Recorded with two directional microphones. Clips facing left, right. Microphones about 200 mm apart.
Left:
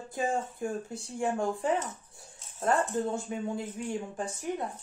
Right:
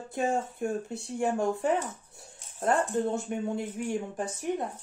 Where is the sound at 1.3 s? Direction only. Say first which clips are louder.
Right 2 dB; 20° right (ahead or behind).